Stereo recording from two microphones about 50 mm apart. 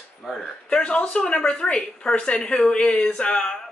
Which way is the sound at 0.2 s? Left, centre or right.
Centre.